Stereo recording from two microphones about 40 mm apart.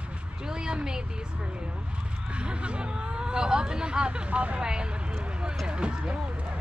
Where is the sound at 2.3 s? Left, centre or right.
Right.